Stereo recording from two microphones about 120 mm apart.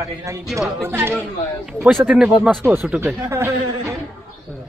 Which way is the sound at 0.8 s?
20° right (ahead or behind).